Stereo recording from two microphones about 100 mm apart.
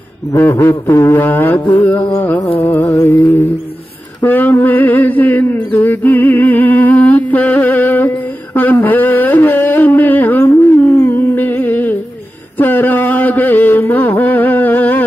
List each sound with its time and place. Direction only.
0.3 s music: 20° left (ahead or behind)
4.2 s a sound: 20° left (ahead or behind)
12.5 s mantra: 20° left (ahead or behind)